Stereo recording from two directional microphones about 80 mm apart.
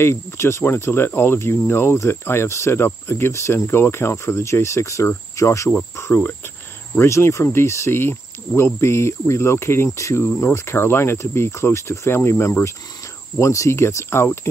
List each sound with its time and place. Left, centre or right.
0.0 s cricket: left